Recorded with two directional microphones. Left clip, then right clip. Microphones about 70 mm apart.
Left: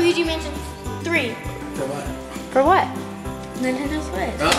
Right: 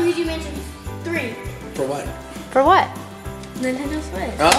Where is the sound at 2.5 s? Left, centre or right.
Right.